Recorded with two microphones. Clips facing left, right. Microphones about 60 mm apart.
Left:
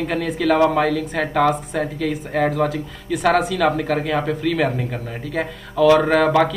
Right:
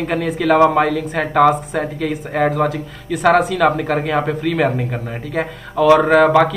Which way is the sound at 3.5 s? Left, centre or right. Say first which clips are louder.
Right 3 dB; centre.